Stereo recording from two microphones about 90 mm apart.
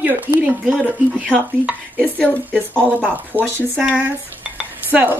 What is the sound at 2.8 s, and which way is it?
Dishes, 20° right (ahead or behind).